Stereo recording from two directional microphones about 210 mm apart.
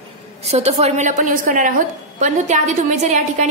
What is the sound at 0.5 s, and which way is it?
A woman's voice, 30° right (ahead or behind).